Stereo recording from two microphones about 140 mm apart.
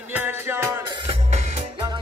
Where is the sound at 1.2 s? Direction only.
55° right (ahead or behind).